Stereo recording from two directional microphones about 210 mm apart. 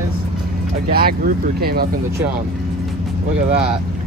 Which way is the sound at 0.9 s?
45° right (ahead or behind).